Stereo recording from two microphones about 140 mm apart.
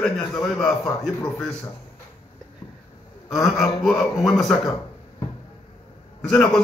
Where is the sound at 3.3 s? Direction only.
Centre (ahead or behind).